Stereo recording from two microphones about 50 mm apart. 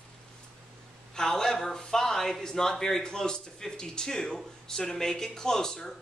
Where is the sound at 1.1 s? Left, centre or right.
Centre.